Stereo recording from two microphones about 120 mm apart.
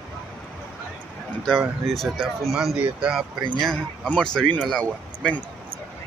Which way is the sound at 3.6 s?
5° left (ahead or behind).